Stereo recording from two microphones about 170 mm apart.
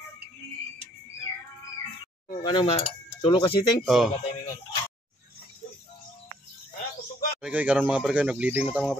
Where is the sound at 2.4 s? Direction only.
25° left (ahead or behind).